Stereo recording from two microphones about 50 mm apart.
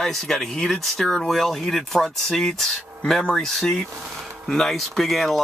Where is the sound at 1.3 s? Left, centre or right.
Centre.